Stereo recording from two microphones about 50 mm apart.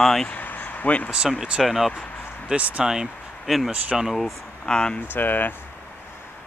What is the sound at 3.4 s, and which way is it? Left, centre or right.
Speech, centre.